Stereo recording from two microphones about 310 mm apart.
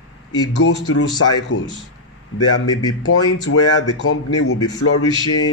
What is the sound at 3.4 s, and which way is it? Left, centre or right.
A man's voice, left.